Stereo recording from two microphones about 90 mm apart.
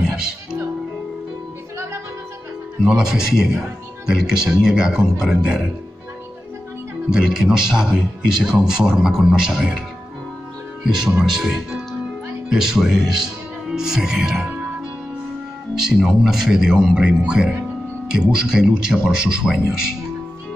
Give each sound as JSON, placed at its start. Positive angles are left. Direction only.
{"t": 2.8, "sound": "speech", "side_deg": -5}
{"t": 7.1, "sound": "speech", "side_deg": -5}
{"t": 15.8, "sound": "speech", "side_deg": -5}